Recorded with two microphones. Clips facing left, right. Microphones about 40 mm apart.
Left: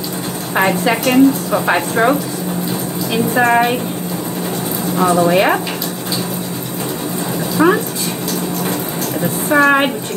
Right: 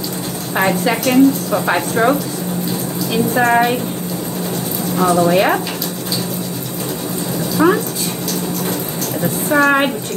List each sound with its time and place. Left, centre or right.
0.6 s speech: centre
4.9 s speech: centre
7.5 s speech: centre
9.2 s speech: centre